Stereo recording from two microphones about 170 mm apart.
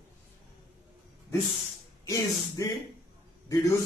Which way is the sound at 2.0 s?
20° left (ahead or behind).